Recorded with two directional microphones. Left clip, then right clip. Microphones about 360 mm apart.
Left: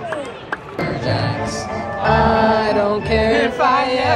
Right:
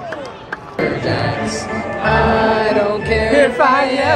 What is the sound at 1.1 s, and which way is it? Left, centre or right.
Music, centre.